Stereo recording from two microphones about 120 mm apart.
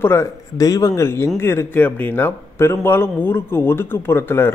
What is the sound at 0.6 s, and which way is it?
A man's voice, 30° left (ahead or behind).